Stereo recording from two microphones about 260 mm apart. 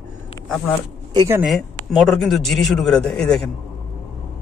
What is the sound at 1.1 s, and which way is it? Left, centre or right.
Speech, centre.